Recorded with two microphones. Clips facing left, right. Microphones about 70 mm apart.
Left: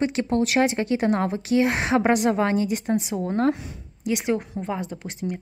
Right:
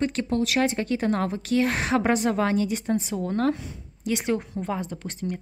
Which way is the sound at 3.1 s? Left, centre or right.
Left.